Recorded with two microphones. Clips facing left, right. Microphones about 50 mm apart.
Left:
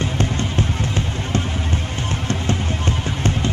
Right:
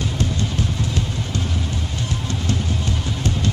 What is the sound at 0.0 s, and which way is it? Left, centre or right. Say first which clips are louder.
Music: left 2 dB; left.